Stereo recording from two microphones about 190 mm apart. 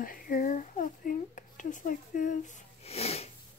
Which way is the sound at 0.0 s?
45° left (ahead or behind).